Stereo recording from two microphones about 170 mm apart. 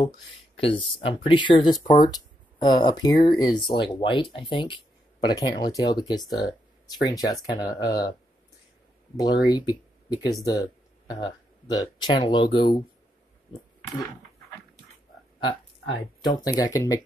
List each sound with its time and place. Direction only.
0.0 s speech: 30° left (ahead or behind)
9.1 s speech: 25° left (ahead or behind)
16.2 s speech: 25° left (ahead or behind)